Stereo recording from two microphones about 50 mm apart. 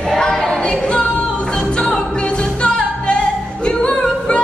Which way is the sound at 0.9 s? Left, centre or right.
Left.